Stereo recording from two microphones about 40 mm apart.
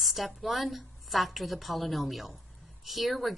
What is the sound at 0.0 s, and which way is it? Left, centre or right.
A woman's voice, centre.